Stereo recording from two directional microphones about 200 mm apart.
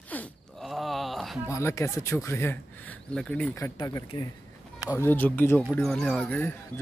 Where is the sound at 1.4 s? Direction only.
15° left (ahead or behind).